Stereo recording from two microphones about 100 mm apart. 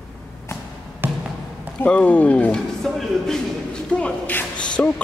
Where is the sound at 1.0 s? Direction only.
20° right (ahead or behind).